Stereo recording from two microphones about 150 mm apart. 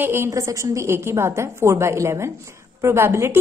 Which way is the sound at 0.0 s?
15° right (ahead or behind).